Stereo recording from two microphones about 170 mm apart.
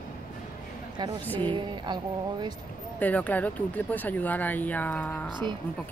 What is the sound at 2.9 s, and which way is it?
Speech, 10° left (ahead or behind).